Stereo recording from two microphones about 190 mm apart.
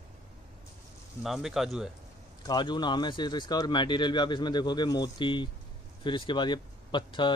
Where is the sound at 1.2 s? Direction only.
Centre (ahead or behind).